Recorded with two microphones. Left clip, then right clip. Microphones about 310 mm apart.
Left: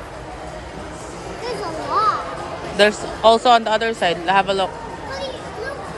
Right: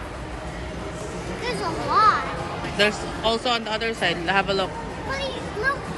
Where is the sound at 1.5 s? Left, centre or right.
Centre.